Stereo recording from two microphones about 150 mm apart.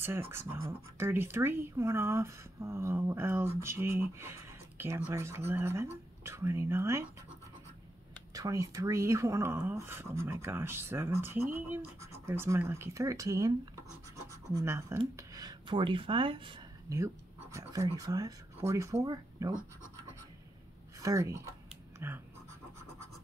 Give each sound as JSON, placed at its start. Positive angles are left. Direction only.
{"t": 0.0, "sound": "speech", "side_deg": -15}
{"t": 8.3, "sound": "speech", "side_deg": -20}
{"t": 14.5, "sound": "speech", "side_deg": -20}
{"t": 16.9, "sound": "speech", "side_deg": -20}
{"t": 21.0, "sound": "speech", "side_deg": -20}